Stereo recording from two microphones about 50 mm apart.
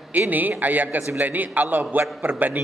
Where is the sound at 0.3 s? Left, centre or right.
Right.